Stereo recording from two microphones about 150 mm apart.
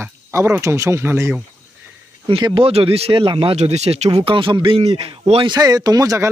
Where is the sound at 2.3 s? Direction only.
35° right (ahead or behind).